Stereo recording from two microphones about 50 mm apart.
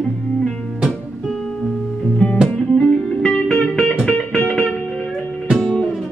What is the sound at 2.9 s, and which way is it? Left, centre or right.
Music, centre.